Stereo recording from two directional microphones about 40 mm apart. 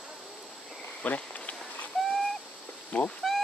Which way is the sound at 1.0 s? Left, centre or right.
Left.